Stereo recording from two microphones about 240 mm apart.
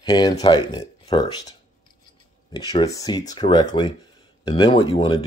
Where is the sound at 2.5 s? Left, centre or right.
Centre.